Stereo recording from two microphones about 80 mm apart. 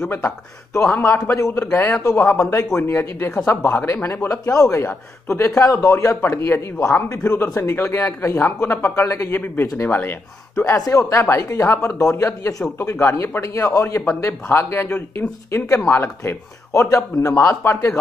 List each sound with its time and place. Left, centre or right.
0.9 s a man's voice: left
10.9 s a man's voice: left